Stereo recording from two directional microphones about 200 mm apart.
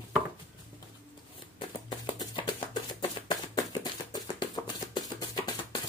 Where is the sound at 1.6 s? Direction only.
25° left (ahead or behind).